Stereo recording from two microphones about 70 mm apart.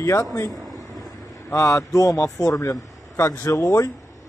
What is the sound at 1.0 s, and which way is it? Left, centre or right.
Vehicle, left.